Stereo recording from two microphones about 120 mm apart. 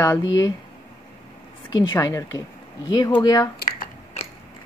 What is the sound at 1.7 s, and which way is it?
Speech, 35° left (ahead or behind).